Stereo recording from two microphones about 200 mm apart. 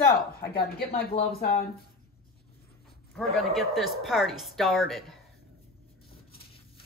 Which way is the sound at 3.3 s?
Centre (ahead or behind).